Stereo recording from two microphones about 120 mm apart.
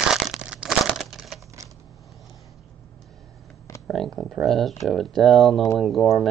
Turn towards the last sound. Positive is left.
turn(degrees=0)  # may be behind; listen again after turning